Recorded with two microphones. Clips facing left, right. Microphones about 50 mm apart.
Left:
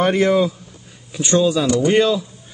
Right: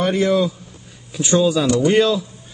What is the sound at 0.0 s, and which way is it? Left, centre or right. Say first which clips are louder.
Speech: left 2 dB; left.